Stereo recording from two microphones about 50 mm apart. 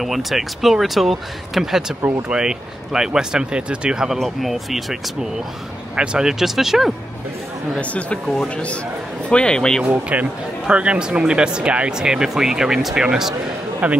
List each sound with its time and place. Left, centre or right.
0.0 s speech: centre
4.2 s speech: centre
5.9 s speech: centre
9.3 s speech: centre
10.1 s speech: right
12.0 s speech: centre
13.8 s speech: right